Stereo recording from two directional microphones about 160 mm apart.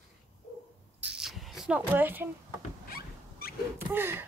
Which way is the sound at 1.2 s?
Centre (ahead or behind).